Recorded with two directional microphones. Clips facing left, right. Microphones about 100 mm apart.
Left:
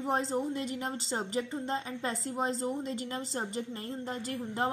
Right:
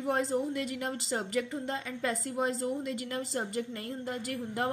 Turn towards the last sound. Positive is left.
turn(degrees=25)  # may be behind; listen again after turning